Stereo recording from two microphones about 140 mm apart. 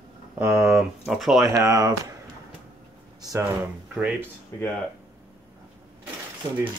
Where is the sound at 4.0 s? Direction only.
10° right (ahead or behind).